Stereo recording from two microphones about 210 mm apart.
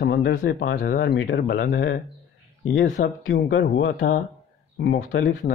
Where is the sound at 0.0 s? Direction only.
50° left (ahead or behind).